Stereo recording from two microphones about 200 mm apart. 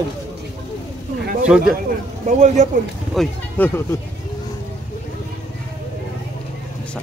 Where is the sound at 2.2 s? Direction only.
35° right (ahead or behind).